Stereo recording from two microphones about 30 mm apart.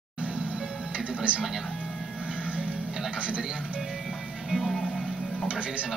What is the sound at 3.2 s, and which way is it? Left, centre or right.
Speech, right.